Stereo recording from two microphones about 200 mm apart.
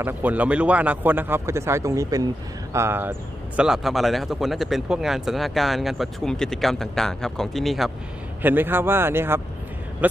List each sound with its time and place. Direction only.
0.0 s speech: 10° right (ahead or behind)